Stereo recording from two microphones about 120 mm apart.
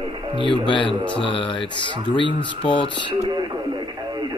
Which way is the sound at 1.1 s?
45° left (ahead or behind).